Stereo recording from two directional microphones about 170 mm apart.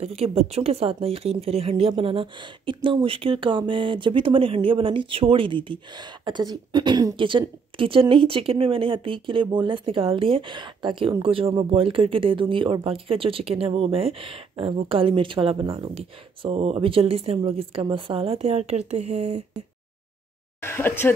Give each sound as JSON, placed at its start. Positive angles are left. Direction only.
{"t": 0.0, "sound": "speech", "side_deg": -35}
{"t": 20.6, "sound": "speech", "side_deg": 10}